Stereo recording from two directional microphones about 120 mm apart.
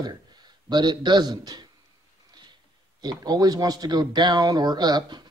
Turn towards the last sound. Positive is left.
turn(degrees=-35)  # may be behind; listen again after turning